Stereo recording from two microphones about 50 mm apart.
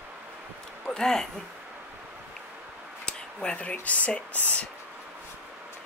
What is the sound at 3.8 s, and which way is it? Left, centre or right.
Speech, left.